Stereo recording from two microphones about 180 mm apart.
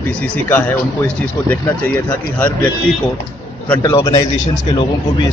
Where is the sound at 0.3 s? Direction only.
10° left (ahead or behind).